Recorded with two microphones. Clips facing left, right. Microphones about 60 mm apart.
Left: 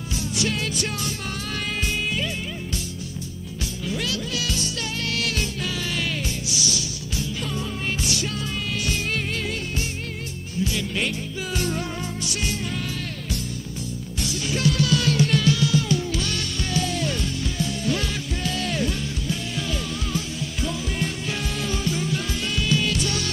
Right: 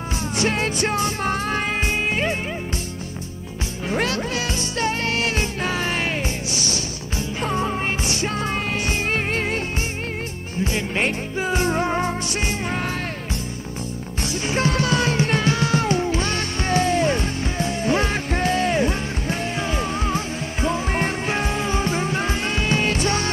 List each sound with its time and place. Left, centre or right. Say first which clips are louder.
0.4 s music: right 5 dB; right
3.9 s music: right 6 dB; right
10.6 s music: right 3 dB; right
14.2 s music: right 2 dB; right